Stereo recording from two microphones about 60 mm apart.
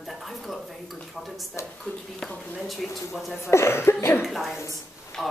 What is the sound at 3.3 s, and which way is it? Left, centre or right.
Speech, left.